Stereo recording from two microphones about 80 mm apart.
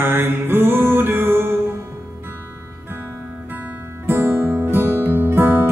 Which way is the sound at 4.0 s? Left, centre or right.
Right.